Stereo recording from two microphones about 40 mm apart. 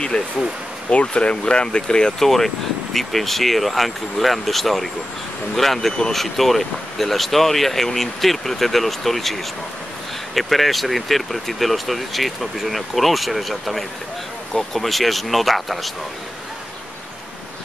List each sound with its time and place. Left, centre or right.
0.1 s speech: left
2.1 s speech: centre